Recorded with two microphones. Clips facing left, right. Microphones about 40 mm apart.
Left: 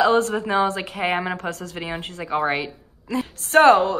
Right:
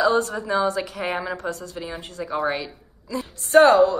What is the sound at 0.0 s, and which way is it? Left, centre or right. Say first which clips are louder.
A woman's voice: left 2 dB; left.